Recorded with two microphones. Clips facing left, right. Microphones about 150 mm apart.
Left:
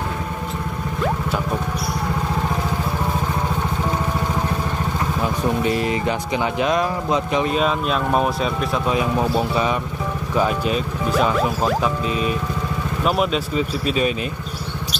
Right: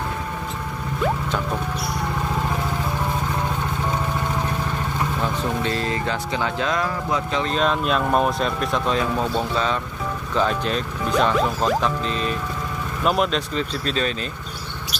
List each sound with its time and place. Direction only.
5.2 s speech: 15° left (ahead or behind)